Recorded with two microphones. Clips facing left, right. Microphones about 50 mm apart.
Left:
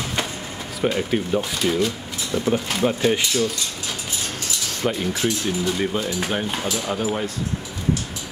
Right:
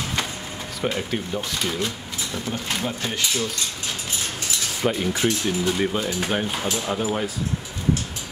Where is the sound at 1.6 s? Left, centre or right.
Centre.